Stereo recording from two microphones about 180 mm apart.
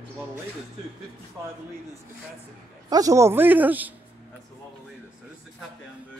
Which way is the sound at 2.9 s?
20° right (ahead or behind).